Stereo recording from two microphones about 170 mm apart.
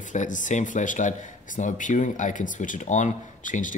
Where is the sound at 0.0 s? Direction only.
45° left (ahead or behind).